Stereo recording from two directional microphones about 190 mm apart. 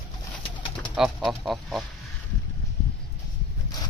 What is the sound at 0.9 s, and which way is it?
Speech, centre (ahead or behind).